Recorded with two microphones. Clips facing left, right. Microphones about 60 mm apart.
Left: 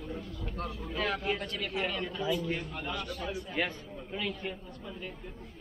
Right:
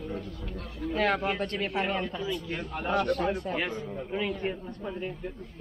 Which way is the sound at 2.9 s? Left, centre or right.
Right.